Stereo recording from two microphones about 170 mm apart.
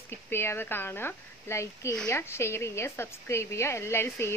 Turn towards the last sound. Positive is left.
turn(degrees=15)  # may be behind; listen again after turning